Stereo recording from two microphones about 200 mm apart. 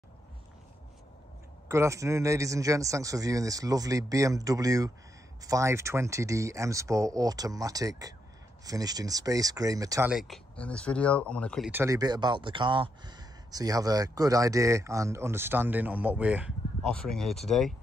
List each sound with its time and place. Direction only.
1.7 s speech: 15° right (ahead or behind)
10.0 s speech: centre (ahead or behind)
11.7 s speech: 15° right (ahead or behind); by 17.7 s centre (ahead or behind)